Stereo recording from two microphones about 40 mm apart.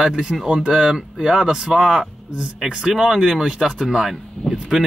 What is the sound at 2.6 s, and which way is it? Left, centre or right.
Speech, centre.